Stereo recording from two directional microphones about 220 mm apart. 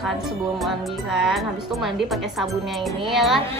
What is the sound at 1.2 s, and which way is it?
Speech, centre (ahead or behind).